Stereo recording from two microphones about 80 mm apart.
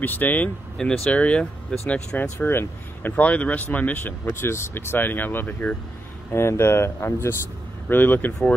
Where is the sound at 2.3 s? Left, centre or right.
Left.